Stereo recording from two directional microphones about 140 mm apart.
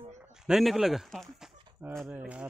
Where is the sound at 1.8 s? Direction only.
10° right (ahead or behind).